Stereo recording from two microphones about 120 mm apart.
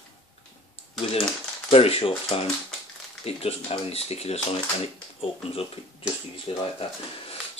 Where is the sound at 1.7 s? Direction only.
55° left (ahead or behind).